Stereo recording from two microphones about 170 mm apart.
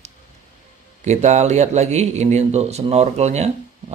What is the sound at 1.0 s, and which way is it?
A man's voice, 40° right (ahead or behind).